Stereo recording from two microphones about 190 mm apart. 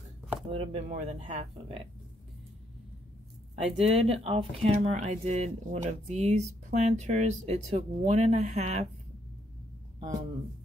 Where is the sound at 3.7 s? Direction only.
35° right (ahead or behind).